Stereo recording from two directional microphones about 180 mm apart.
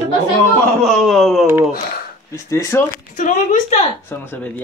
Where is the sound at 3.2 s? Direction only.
45° left (ahead or behind).